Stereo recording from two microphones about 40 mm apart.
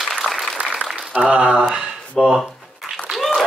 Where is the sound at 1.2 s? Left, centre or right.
Right.